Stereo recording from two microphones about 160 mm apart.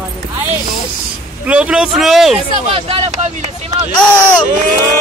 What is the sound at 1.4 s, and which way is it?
Speech, 5° right (ahead or behind).